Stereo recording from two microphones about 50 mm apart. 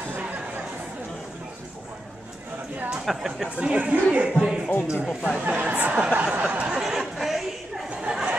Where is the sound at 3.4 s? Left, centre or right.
Right.